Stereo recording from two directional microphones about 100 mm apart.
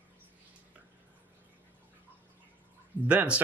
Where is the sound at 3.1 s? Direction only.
15° right (ahead or behind).